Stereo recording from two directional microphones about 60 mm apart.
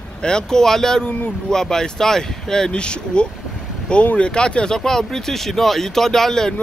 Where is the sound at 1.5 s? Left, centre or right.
Centre.